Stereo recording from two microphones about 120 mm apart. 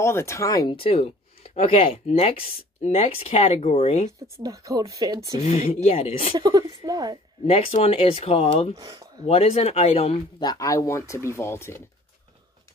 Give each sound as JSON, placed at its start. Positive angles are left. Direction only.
{"t": 0.0, "sound": "speech", "side_deg": 20}
{"t": 0.7, "sound": "speech", "side_deg": 50}
{"t": 4.2, "sound": "speech", "side_deg": -30}
{"t": 5.4, "sound": "speech", "side_deg": 65}
{"t": 6.3, "sound": "a woman's voice", "side_deg": -40}
{"t": 7.4, "sound": "speech", "side_deg": 55}
{"t": 8.7, "sound": "a woman's voice", "side_deg": -30}
{"t": 9.2, "sound": "speech", "side_deg": 60}
{"t": 10.4, "sound": "speech", "side_deg": 30}